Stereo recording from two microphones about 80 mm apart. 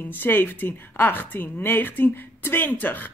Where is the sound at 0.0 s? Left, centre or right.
Left.